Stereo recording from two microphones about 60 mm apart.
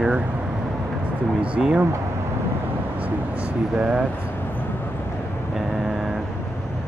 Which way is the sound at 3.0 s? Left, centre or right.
Right.